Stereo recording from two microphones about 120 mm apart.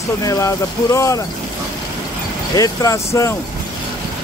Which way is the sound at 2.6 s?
30° left (ahead or behind).